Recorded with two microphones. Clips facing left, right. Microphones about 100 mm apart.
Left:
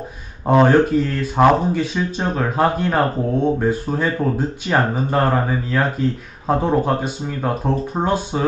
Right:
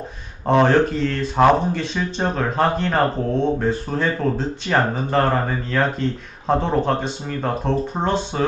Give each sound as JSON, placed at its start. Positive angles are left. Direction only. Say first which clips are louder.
{"t": 0.5, "sound": "speech", "louder": "left 2 dB", "side_deg": 5}